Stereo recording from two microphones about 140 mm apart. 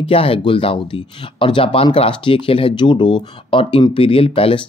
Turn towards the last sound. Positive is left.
turn(degrees=40)  # may be behind; listen again after turning